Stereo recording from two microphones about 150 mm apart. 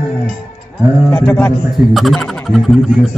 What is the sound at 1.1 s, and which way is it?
A man's voice, 10° left (ahead or behind).